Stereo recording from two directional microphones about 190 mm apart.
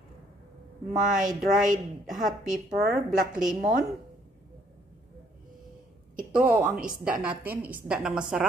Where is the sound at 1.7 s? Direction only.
45° right (ahead or behind).